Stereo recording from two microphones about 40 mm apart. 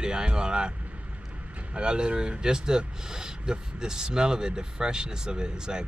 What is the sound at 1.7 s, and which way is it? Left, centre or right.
Speech, right.